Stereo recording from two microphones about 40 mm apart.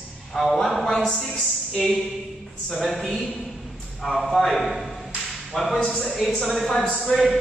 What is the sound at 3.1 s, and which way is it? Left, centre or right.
Speech, left.